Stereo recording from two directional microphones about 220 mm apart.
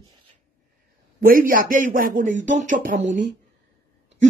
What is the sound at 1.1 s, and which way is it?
Speech, 40° right (ahead or behind).